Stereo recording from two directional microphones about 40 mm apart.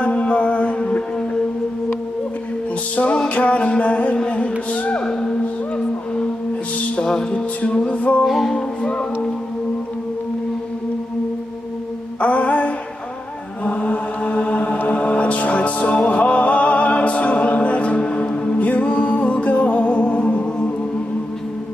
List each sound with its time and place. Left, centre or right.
0.0 s music: left
3.3 s music: left
7.1 s music: centre
7.3 s music: left
8.3 s music: centre
8.5 s music: left
12.2 s music: left
13.7 s mantra: left
14.9 s music: left